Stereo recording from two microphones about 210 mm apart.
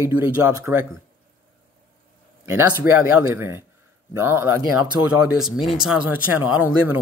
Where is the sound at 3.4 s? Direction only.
10° right (ahead or behind).